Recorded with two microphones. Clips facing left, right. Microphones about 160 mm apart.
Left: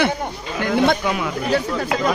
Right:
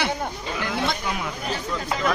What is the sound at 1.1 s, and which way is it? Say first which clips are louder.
Speech: left 8 dB; 75° left (ahead or behind).